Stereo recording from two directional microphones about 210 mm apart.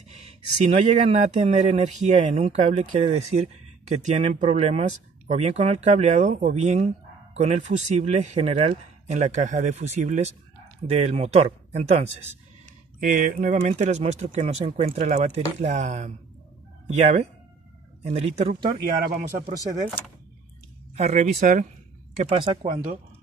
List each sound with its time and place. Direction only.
0.1 s speech: 35° right (ahead or behind)
20.9 s speech: 30° right (ahead or behind)
22.1 s speech: 25° right (ahead or behind)